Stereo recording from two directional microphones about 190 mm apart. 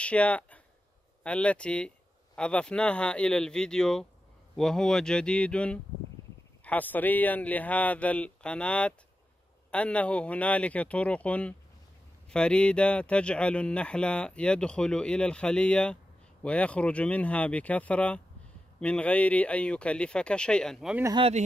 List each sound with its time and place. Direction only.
0.0 s speech: 5° left (ahead or behind)